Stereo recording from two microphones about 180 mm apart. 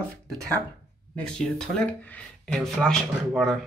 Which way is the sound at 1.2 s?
5° left (ahead or behind).